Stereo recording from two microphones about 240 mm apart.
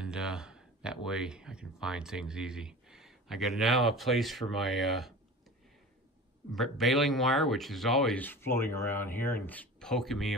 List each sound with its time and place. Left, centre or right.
0.0 s speech: centre
6.5 s speech: centre